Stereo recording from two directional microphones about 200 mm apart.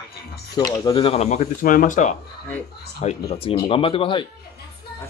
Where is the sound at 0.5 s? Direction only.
15° left (ahead or behind); by 2.1 s 40° left (ahead or behind).